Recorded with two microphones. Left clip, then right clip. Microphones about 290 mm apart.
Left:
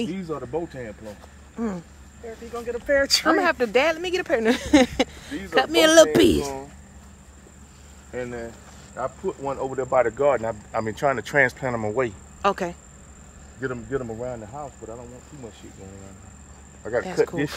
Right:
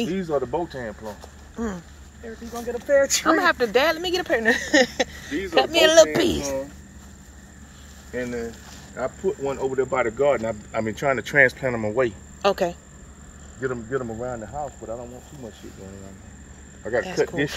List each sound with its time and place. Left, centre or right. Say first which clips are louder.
0.0 s speech: right 6 dB; centre
3.2 s speech: right 1 dB; centre
4.4 s speech: even; left
8.2 s speech: right 3 dB; centre
16.8 s speech: even; centre